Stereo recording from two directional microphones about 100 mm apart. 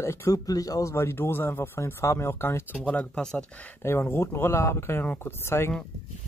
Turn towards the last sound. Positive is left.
turn(degrees=25)  # may be behind; listen again after turning